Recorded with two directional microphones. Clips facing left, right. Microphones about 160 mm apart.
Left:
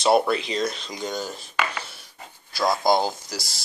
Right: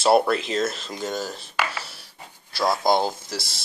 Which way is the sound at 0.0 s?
5° right (ahead or behind).